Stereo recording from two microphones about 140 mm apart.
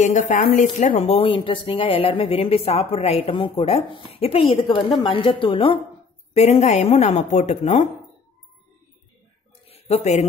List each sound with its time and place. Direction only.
0.0 s speech: 60° left (ahead or behind); by 5.8 s 40° left (ahead or behind)
6.3 s speech: 50° left (ahead or behind)
9.7 s a sound: 50° left (ahead or behind)